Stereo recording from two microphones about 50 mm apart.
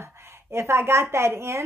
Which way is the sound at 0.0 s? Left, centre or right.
Right.